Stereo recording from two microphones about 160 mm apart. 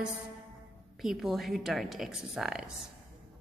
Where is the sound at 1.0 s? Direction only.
Centre (ahead or behind).